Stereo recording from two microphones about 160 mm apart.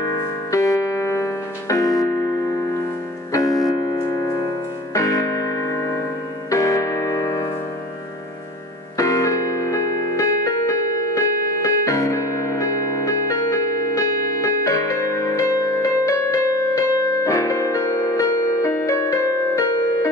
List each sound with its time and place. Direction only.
0.5 s music: 20° left (ahead or behind)
3.3 s piano: 20° left (ahead or behind)
6.5 s piano: 20° left (ahead or behind)
8.9 s music: 20° left (ahead or behind)